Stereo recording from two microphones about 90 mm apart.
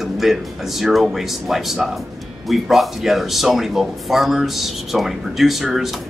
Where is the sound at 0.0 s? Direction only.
Centre (ahead or behind).